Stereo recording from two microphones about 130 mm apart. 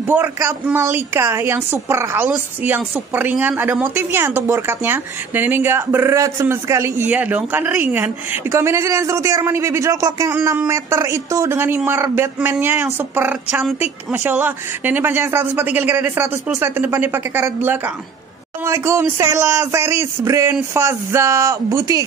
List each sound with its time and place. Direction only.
0.0 s a woman's voice: 15° right (ahead or behind)